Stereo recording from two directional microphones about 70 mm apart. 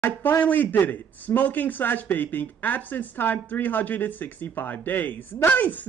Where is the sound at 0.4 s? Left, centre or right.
Left.